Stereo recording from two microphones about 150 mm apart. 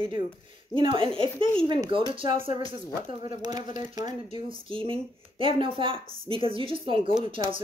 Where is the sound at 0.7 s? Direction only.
35° right (ahead or behind).